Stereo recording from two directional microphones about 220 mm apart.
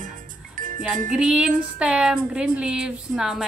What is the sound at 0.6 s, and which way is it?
Music, 35° right (ahead or behind).